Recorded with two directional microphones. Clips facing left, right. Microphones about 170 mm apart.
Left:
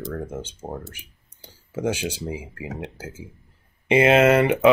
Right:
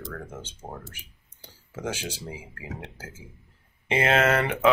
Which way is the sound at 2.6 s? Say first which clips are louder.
Left 6 dB; 15° left (ahead or behind).